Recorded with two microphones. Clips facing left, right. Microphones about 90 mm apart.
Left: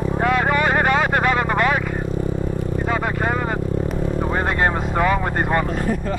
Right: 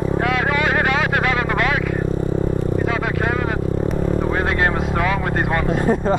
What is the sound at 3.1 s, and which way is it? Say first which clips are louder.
Vehicle: right 1 dB; 5° left (ahead or behind).